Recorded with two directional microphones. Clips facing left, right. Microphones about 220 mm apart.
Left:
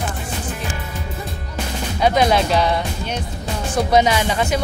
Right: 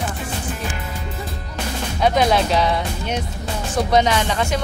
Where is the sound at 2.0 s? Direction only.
Centre (ahead or behind).